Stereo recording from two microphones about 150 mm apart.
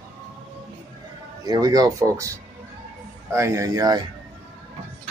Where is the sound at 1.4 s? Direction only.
25° right (ahead or behind).